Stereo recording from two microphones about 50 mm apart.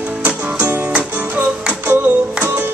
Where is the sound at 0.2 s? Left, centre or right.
Right.